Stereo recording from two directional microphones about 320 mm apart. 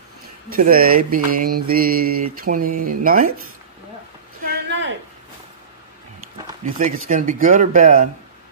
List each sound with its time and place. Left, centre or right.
0.5 s speech: right
4.4 s a sound: right
6.6 s speech: right